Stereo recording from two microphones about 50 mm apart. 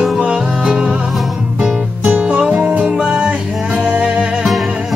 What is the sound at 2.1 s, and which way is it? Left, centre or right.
Music, right.